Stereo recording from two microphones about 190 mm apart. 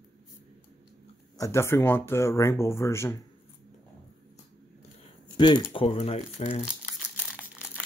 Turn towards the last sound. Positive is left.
turn(degrees=-5)  # may be behind; listen again after turning